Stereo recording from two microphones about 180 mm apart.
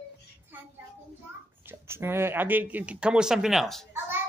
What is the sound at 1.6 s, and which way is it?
Speech, 10° right (ahead or behind).